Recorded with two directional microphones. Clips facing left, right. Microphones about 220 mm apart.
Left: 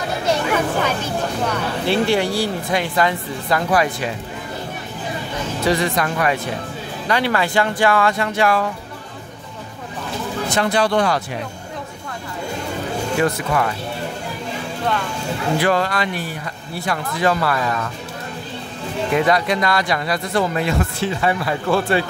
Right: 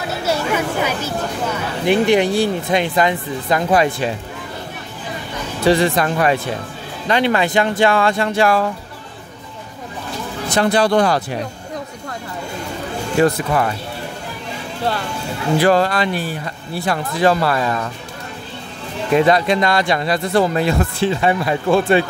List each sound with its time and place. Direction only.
0.2 s a sound: 5° right (ahead or behind)
1.9 s speech: 20° right (ahead or behind)
5.7 s speech: 30° right (ahead or behind)
10.6 s speech: 35° right (ahead or behind)
13.2 s speech: 30° right (ahead or behind)
15.6 s speech: 35° right (ahead or behind)
19.1 s speech: 25° right (ahead or behind)
21.2 s speech: 20° right (ahead or behind)